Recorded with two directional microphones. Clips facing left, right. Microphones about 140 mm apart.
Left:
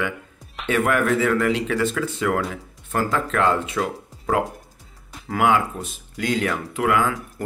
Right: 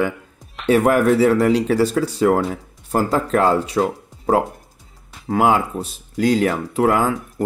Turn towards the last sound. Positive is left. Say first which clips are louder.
# right 4 dB
turn(degrees=-35)  # may be behind; listen again after turning